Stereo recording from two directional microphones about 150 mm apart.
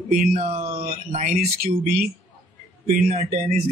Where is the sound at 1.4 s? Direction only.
75° right (ahead or behind).